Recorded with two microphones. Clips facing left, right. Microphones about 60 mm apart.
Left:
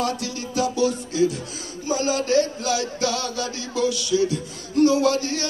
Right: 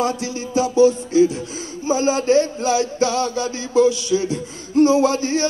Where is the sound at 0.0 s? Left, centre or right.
Right.